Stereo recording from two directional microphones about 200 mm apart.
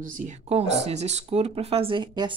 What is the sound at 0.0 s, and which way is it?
Speech, 40° right (ahead or behind).